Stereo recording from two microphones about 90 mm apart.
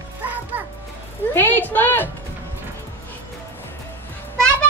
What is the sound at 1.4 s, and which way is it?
Speech, 20° left (ahead or behind).